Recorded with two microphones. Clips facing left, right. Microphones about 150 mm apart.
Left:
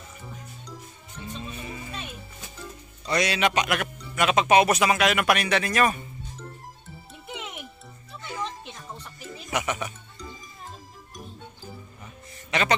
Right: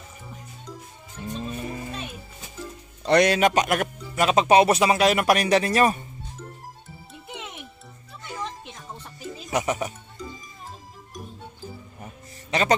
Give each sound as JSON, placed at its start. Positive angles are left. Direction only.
{"t": 1.4, "sound": "music", "side_deg": -45}
{"t": 3.1, "sound": "speech", "side_deg": -50}
{"t": 7.1, "sound": "music", "side_deg": 0}
{"t": 9.5, "sound": "a sound", "side_deg": -35}
{"t": 12.0, "sound": "music", "side_deg": -40}